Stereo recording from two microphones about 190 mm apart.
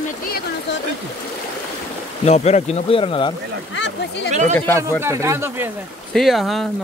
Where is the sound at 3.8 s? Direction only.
65° left (ahead or behind).